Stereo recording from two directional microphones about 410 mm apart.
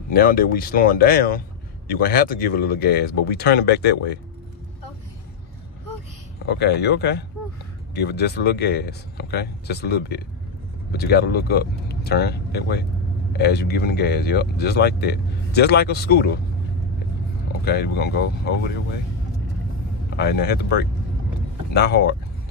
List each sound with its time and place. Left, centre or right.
0.1 s speech: left
6.6 s speech: left
17.6 s speech: left
20.2 s speech: left